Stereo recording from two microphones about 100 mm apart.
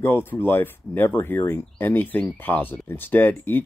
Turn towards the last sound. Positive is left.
turn(degrees=20)  # may be behind; listen again after turning